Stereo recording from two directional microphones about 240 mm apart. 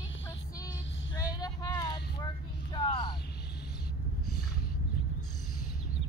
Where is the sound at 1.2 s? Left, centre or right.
Centre.